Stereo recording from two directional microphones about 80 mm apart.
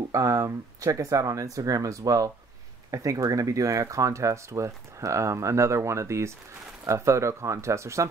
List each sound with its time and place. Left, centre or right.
0.1 s speech: right